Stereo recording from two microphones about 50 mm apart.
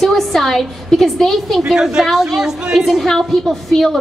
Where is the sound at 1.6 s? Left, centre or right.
Centre.